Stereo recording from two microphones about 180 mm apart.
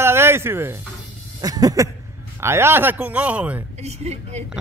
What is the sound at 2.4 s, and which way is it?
Speech, 15° right (ahead or behind).